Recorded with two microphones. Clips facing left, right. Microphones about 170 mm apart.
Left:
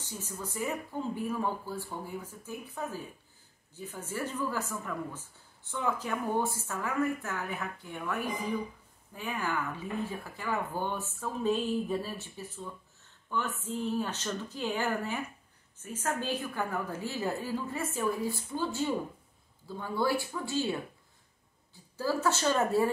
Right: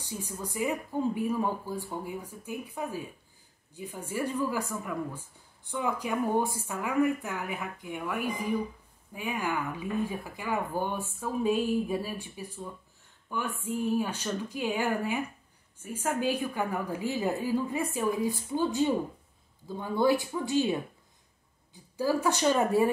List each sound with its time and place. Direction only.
0.0 s speech: 15° right (ahead or behind)